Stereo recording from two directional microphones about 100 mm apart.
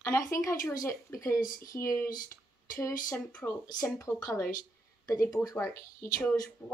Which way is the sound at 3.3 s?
10° left (ahead or behind).